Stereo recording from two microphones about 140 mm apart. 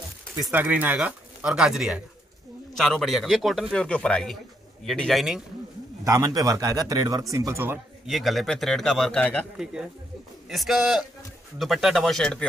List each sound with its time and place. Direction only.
0.5 s speech: 15° right (ahead or behind)
6.0 s speech: 25° right (ahead or behind)
8.1 s speech: centre (ahead or behind)
10.5 s speech: centre (ahead or behind)